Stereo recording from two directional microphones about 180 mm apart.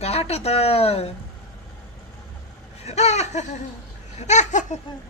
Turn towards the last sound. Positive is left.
turn(degrees=40)  # may be behind; listen again after turning